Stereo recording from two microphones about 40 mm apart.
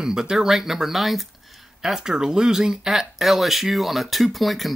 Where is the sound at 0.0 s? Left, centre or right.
Centre.